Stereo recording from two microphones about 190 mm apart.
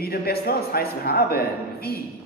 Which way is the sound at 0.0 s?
55° left (ahead or behind).